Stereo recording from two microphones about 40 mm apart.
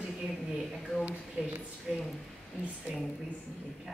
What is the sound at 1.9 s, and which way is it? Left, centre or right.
Speech, centre.